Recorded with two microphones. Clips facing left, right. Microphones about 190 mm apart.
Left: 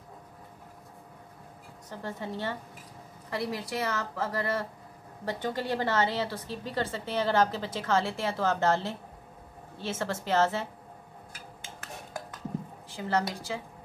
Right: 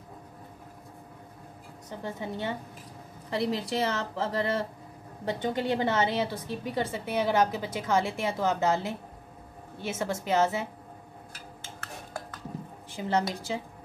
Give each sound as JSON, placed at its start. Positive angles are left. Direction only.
{"t": 1.9, "sound": "a woman's voice", "side_deg": -15}
{"t": 12.9, "sound": "a woman's voice", "side_deg": -20}